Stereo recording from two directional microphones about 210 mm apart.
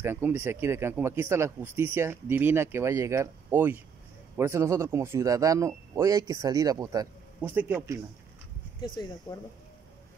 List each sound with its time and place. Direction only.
0.0 s speech: 10° right (ahead or behind)
8.8 s speech: 20° left (ahead or behind)